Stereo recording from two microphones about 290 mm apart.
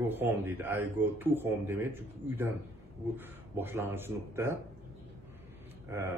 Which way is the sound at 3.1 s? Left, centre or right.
Centre.